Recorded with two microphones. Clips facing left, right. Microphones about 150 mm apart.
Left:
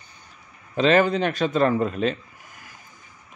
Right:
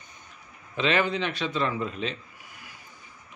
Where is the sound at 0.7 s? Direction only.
40° left (ahead or behind).